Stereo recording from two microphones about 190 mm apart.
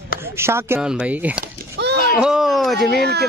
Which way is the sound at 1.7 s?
60° right (ahead or behind).